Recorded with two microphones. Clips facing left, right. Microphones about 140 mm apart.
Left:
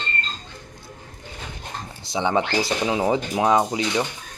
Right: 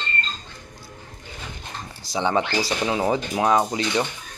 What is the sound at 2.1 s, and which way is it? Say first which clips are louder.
Speech: left 1 dB; 15° left (ahead or behind).